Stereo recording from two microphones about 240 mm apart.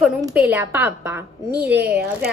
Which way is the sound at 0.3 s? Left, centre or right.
Centre.